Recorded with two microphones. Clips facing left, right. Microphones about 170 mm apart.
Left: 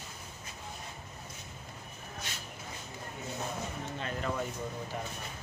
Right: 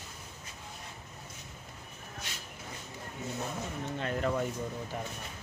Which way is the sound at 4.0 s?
50° right (ahead or behind).